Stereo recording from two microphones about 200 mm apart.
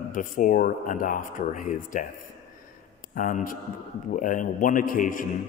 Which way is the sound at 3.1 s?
40° left (ahead or behind).